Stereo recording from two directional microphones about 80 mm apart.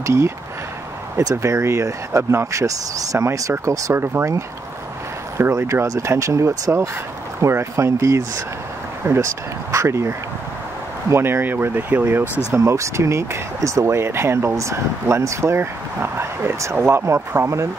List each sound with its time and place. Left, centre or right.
0.0 s speech: right
1.3 s speech: right
4.0 s speech: right
5.4 s speech: right
12.4 s speech: right